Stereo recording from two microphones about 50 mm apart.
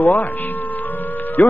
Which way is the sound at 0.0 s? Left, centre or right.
Left.